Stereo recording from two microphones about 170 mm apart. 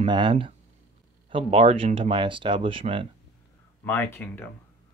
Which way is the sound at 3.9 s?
10° left (ahead or behind).